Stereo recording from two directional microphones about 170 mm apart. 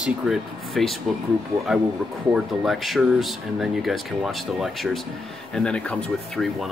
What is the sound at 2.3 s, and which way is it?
Speech, centre (ahead or behind).